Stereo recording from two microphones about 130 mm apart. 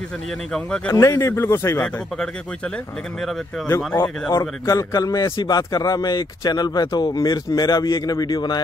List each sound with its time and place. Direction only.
0.5 s speech: 5° left (ahead or behind)
0.9 s speech: 25° left (ahead or behind)
3.6 s a man's voice: 20° left (ahead or behind); by 8.6 s 35° left (ahead or behind)